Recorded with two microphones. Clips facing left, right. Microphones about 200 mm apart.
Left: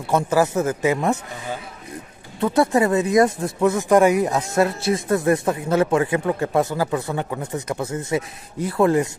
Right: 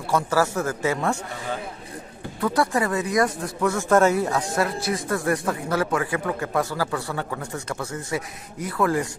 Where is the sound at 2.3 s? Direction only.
25° left (ahead or behind).